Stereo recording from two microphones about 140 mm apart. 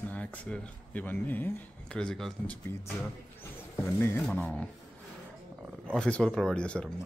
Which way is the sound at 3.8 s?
15° left (ahead or behind).